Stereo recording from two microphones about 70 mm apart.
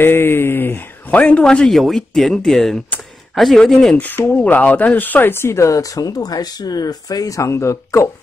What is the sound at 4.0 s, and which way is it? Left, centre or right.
Speech, left.